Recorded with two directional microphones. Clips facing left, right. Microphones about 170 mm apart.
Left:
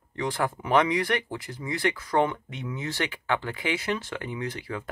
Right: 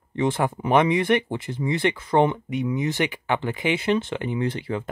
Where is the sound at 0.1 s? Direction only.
25° right (ahead or behind).